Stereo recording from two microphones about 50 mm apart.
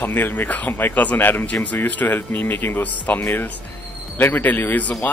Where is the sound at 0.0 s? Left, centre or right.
Left.